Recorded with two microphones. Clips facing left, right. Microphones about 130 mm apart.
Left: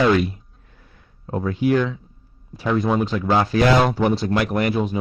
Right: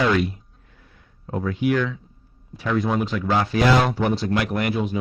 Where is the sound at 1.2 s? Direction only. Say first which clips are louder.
Left 2 dB; 30° left (ahead or behind).